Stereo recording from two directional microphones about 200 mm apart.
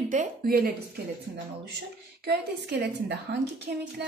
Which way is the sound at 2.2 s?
60° right (ahead or behind).